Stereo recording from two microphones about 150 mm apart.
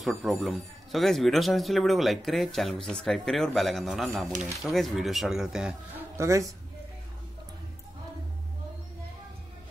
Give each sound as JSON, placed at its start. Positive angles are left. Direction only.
{"t": 0.0, "sound": "a man's voice", "side_deg": 0}
{"t": 6.1, "sound": "speech", "side_deg": -20}